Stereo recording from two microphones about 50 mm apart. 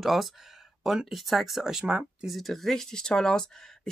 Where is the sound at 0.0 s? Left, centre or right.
Centre.